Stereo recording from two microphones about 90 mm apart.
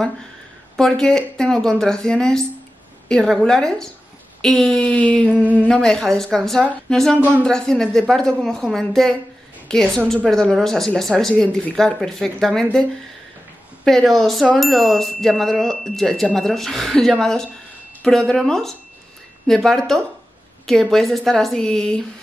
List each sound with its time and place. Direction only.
0.7 s a woman's voice: 5° left (ahead or behind)
5.3 s a sound: 15° right (ahead or behind)
5.6 s a woman's voice: 10° left (ahead or behind)
7.2 s speech: 20° right (ahead or behind)
7.4 s a woman's voice: 5° left (ahead or behind)
13.8 s a woman's voice: 5° left (ahead or behind)